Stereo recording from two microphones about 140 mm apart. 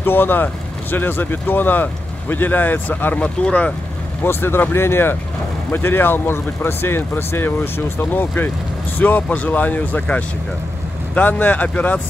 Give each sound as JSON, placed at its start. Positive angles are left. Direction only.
{"t": 0.0, "sound": "speech", "side_deg": 15}